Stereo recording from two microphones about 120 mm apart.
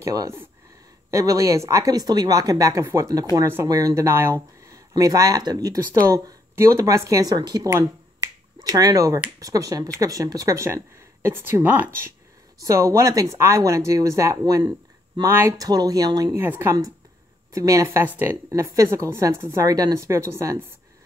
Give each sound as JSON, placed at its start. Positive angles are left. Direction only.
{"t": 0.0, "sound": "speech", "side_deg": -30}
{"t": 12.5, "sound": "speech", "side_deg": -25}
{"t": 15.2, "sound": "speech", "side_deg": -20}
{"t": 15.6, "sound": "speech", "side_deg": -30}
{"t": 16.3, "sound": "speech", "side_deg": -15}
{"t": 18.5, "sound": "speech", "side_deg": -30}